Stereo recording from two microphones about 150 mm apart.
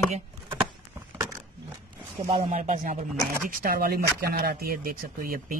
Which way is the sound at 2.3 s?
45° right (ahead or behind).